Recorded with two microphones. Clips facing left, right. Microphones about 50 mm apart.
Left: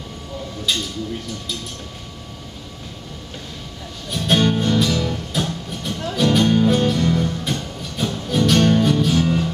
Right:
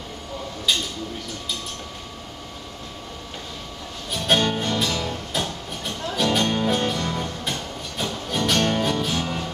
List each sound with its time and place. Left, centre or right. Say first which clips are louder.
4.1 s music: left 3 dB; centre